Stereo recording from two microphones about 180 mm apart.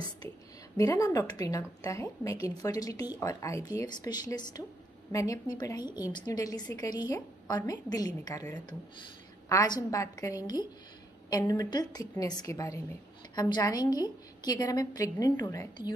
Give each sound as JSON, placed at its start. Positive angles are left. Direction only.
{"t": 0.7, "sound": "a woman's voice", "side_deg": 15}
{"t": 9.5, "sound": "a woman's voice", "side_deg": 20}